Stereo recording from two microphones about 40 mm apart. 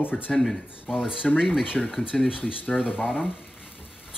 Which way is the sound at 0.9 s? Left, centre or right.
Right.